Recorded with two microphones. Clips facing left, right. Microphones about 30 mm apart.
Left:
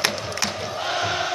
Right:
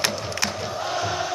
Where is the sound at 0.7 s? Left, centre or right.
Left.